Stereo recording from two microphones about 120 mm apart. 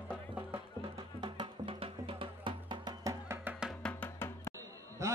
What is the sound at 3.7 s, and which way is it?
Music, 10° left (ahead or behind).